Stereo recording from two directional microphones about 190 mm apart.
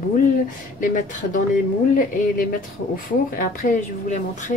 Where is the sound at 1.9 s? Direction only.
50° left (ahead or behind).